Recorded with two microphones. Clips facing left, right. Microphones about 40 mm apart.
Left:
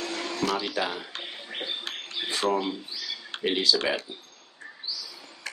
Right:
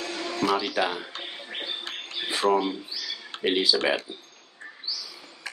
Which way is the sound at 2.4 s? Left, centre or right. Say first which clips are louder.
Right 4 dB; centre.